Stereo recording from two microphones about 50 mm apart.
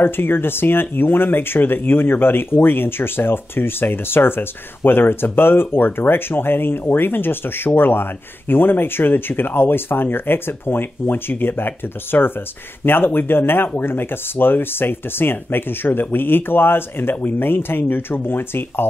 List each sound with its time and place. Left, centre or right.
0.0 s speech: left